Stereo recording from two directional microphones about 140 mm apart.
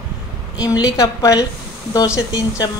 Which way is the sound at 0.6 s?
25° left (ahead or behind).